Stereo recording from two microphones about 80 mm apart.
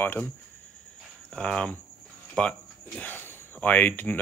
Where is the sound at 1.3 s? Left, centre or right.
Centre.